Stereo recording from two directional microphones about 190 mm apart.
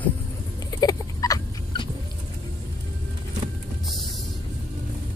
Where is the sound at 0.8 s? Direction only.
20° left (ahead or behind).